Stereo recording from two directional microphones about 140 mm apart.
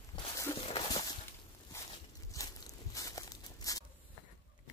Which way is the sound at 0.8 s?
30° left (ahead or behind).